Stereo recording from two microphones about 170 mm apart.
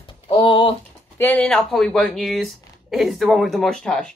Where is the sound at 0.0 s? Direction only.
30° left (ahead or behind).